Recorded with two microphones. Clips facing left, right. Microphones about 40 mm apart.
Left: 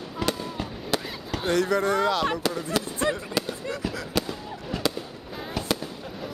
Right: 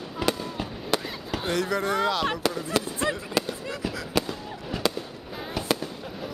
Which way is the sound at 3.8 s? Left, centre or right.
Centre.